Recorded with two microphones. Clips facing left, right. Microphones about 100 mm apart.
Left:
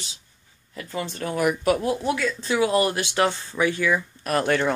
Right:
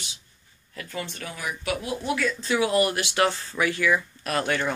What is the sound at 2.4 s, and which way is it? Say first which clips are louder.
Speech: left 1 dB; 25° left (ahead or behind).